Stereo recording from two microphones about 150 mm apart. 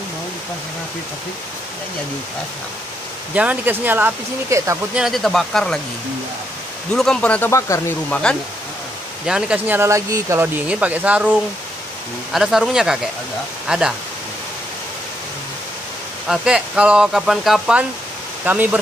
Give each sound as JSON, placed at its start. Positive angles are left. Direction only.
{"t": 3.3, "sound": "speech", "side_deg": -10}
{"t": 4.9, "sound": "speech", "side_deg": 0}
{"t": 6.9, "sound": "speech", "side_deg": 5}
{"t": 9.2, "sound": "speech", "side_deg": -5}
{"t": 9.8, "sound": "speech", "side_deg": -20}
{"t": 16.3, "sound": "speech", "side_deg": -5}